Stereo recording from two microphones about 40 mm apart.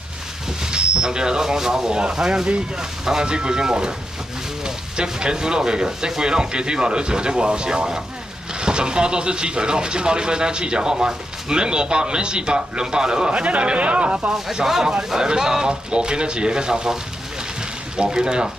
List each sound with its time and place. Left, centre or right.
0.6 s speech: centre
14.3 s speech: centre